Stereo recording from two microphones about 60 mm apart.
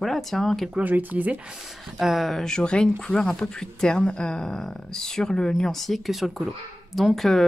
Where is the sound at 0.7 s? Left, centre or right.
Right.